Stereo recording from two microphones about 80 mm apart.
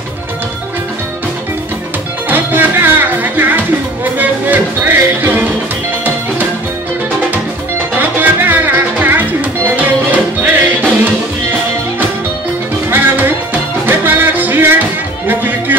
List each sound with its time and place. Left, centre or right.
2.2 s music: right
8.0 s music: right
12.9 s music: right